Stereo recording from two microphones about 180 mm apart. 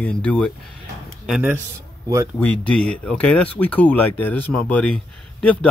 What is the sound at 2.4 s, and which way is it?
A man's voice, 5° left (ahead or behind).